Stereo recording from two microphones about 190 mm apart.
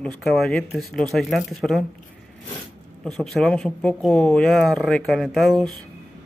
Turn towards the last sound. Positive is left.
turn(degrees=0)  # may be behind; listen again after turning